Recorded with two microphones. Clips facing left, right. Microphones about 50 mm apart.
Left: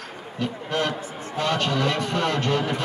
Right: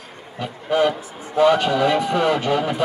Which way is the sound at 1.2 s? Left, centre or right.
Centre.